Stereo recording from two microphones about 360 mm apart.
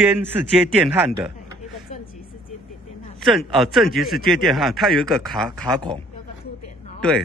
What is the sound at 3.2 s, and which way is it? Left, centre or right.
Speech, centre.